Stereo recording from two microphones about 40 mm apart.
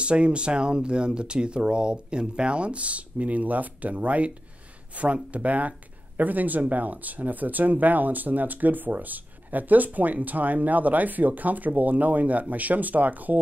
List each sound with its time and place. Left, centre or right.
0.0 s speech: right